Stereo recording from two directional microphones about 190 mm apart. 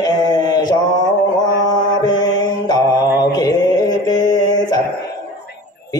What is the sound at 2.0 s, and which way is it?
Mantra, 20° left (ahead or behind).